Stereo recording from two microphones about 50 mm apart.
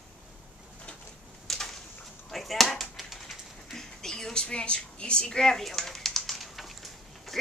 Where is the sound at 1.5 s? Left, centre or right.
Centre.